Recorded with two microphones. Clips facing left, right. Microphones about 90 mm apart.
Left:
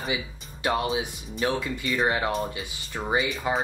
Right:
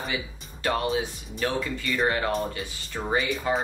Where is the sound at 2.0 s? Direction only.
20° left (ahead or behind).